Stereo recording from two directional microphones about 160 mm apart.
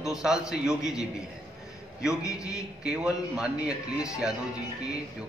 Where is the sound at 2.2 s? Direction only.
20° left (ahead or behind).